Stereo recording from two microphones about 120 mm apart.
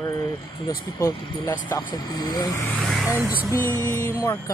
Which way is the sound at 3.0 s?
15° right (ahead or behind).